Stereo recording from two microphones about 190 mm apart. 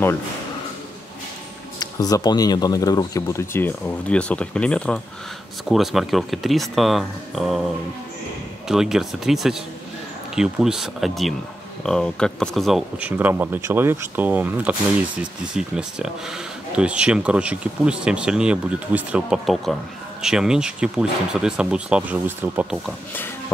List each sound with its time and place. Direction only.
1.8 s speech: 20° left (ahead or behind); by 7.6 s centre (ahead or behind)
8.6 s speech: centre (ahead or behind)